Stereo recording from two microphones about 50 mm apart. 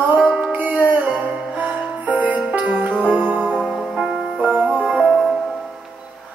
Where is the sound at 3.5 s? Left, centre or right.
Centre.